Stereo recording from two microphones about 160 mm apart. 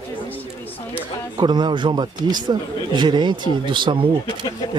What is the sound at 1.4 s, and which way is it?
A man's voice, 25° right (ahead or behind).